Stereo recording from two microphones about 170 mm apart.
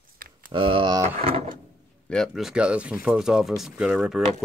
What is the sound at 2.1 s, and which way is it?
Speech, centre (ahead or behind).